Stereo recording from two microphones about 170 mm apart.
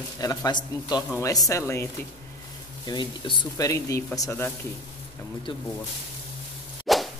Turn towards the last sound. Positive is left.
turn(degrees=0)  # may be behind; listen again after turning